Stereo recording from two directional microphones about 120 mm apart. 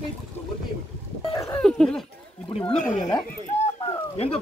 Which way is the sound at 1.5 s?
5° left (ahead or behind).